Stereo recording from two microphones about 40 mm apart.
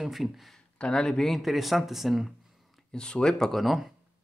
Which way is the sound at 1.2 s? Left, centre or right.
Centre.